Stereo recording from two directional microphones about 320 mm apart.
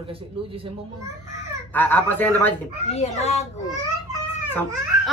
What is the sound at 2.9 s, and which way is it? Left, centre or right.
Speech, left.